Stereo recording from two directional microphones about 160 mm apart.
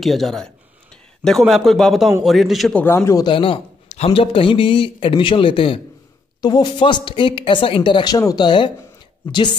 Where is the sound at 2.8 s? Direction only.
15° left (ahead or behind).